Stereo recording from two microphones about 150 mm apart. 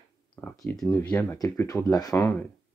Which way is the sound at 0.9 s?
15° left (ahead or behind).